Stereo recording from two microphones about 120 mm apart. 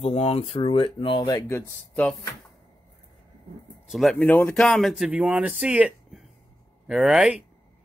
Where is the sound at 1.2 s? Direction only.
30° left (ahead or behind).